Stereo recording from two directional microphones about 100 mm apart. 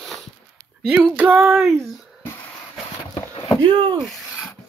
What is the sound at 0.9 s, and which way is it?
Female singing, 5° right (ahead or behind).